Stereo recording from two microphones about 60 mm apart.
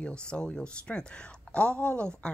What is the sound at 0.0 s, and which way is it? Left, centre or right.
A woman's voice, centre.